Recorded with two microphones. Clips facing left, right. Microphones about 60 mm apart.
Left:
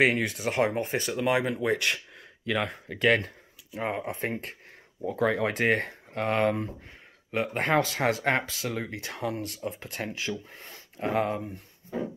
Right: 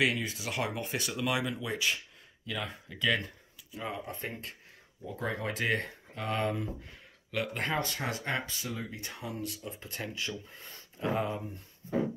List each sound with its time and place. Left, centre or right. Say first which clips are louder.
0.2 s speech: left 7 dB; left
0.5 s speech: left 9 dB; left
1.5 s speech: left 6 dB; left
7.2 s speech: left 5 dB; left
7.6 s speech: left 12 dB; left